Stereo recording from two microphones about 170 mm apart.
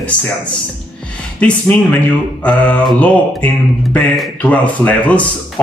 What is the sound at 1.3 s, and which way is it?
Speech, 5° left (ahead or behind).